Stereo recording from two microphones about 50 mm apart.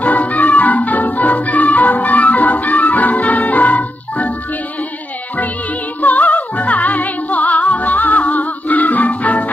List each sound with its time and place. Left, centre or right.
0.0 s music: left
5.9 s music: left